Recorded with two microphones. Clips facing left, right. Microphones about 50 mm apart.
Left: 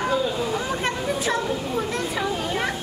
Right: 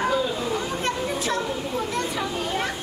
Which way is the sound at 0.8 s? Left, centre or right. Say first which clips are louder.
Left 1 dB; centre.